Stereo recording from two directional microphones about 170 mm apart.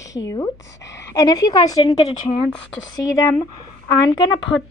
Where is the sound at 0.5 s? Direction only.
90° left.